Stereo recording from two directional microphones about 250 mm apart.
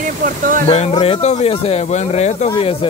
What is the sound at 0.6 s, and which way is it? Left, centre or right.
Speech, left.